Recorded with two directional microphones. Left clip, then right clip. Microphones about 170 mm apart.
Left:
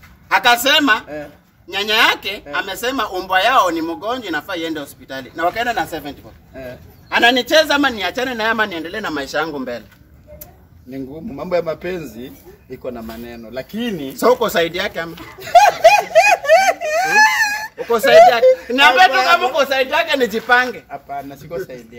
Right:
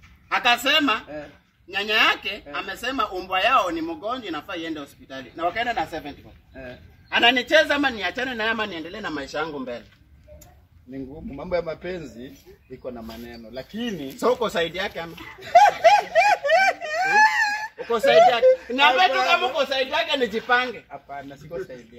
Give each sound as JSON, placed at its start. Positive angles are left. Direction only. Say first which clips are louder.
{"t": 0.3, "sound": "speech", "louder": "left 7 dB", "side_deg": 10}
{"t": 10.9, "sound": "speech", "louder": "left 7 dB", "side_deg": 25}
{"t": 14.2, "sound": "speech", "louder": "left 8 dB", "side_deg": 10}
{"t": 15.6, "sound": "a sound", "louder": "left 4 dB", "side_deg": 35}
{"t": 17.9, "sound": "speech", "louder": "left 7 dB", "side_deg": 0}
{"t": 20.9, "sound": "speech", "louder": "left 8 dB", "side_deg": 30}